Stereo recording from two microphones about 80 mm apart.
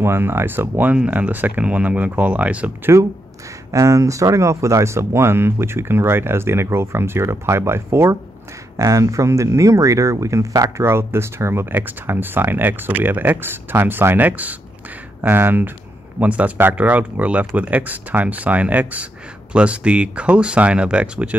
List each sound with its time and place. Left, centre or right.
0.0 s speech: right
3.7 s speech: right; by 21.4 s centre